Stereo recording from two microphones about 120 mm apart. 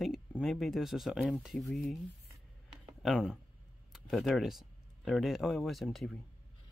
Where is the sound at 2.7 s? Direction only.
Centre (ahead or behind).